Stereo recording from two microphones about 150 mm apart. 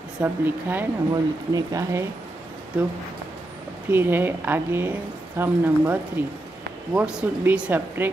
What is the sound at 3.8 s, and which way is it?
A woman's voice, 15° right (ahead or behind).